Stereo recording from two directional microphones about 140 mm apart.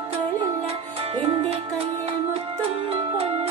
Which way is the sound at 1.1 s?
45° right (ahead or behind).